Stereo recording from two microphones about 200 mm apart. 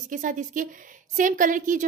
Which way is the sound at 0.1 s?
40° right (ahead or behind).